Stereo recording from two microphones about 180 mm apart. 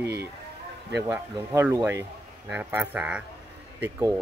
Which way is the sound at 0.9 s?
15° right (ahead or behind).